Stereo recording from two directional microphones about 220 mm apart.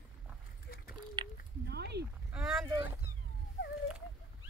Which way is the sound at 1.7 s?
50° right (ahead or behind).